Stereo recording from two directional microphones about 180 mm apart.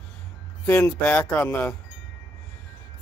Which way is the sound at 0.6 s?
10° left (ahead or behind).